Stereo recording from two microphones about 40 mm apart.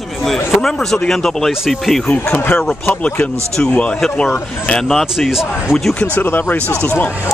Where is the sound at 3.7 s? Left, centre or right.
Left.